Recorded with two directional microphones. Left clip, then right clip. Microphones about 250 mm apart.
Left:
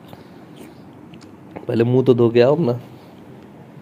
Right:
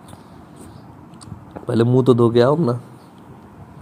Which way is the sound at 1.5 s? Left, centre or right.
Right.